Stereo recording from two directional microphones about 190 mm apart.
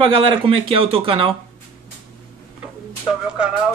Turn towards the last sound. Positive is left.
turn(degrees=-5)  # may be behind; listen again after turning